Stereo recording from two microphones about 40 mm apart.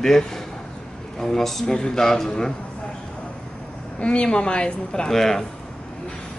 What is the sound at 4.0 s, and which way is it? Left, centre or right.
A woman's voice, left.